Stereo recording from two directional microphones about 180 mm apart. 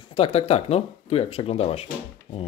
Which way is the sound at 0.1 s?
30° left (ahead or behind).